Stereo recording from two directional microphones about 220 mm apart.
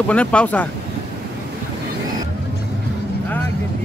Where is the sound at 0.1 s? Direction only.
5° left (ahead or behind).